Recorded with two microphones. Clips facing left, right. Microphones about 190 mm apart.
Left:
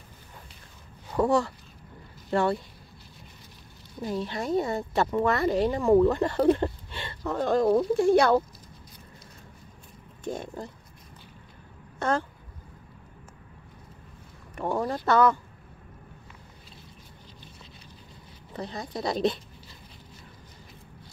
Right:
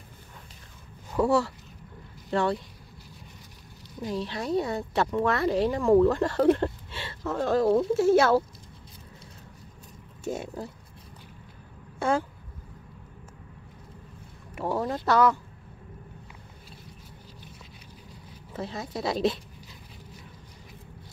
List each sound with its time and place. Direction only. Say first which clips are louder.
1.2 s speech: even; 15° left (ahead or behind)
2.3 s speech: left 1 dB; centre (ahead or behind)
4.0 s speech: left 1 dB; centre (ahead or behind)
10.2 s speech: right 1 dB; 5° right (ahead or behind)
12.0 s speech: right 1 dB; 10° right (ahead or behind)
14.5 s speech: even; 5° right (ahead or behind)
18.5 s speech: right 1 dB; centre (ahead or behind)